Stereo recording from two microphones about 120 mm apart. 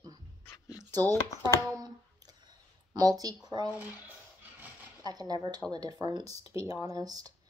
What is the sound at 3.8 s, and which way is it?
Speech, 15° right (ahead or behind).